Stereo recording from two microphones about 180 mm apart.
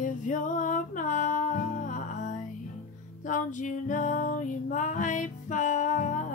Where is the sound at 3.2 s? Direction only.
45° left (ahead or behind).